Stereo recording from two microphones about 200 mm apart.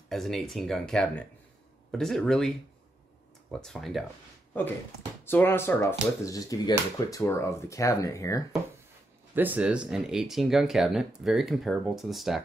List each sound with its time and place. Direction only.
0.1 s speech: centre (ahead or behind)
3.5 s speech: 5° left (ahead or behind)
5.2 s speech: 10° left (ahead or behind)
9.3 s speech: 10° right (ahead or behind)